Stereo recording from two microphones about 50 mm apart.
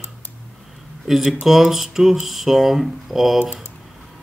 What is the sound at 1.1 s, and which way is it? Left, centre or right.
Speech, centre.